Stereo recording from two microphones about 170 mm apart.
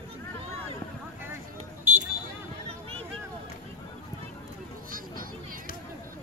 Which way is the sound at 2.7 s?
35° right (ahead or behind).